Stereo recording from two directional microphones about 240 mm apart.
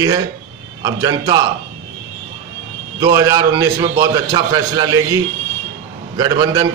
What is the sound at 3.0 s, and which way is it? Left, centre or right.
A man's voice, centre.